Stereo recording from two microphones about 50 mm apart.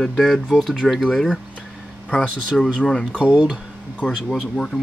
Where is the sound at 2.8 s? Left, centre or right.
Centre.